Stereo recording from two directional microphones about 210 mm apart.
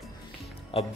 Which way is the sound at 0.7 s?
30° left (ahead or behind).